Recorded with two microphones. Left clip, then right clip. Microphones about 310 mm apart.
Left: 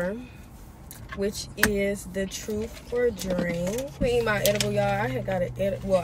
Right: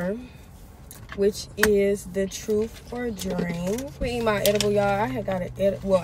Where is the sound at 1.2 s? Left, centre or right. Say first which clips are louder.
Right 4 dB; centre.